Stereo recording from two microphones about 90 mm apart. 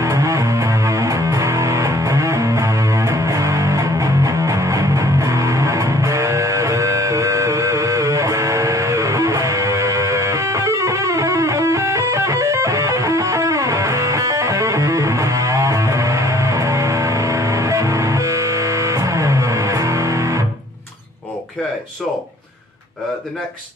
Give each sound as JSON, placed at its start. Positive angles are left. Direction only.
{"t": 0.0, "sound": "music", "side_deg": -35}